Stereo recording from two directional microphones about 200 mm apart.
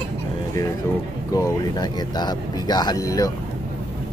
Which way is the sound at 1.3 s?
15° left (ahead or behind).